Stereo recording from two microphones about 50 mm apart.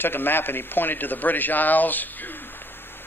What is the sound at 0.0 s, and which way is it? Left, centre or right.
A man's voice, left.